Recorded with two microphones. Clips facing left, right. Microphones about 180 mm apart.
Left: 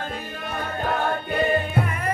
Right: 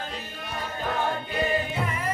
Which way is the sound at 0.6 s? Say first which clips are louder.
Left 3 dB; 55° left (ahead or behind).